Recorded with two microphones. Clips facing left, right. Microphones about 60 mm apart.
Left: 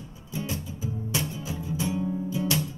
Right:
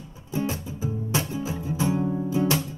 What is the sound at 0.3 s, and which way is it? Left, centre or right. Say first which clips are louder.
Music: right 5 dB; right.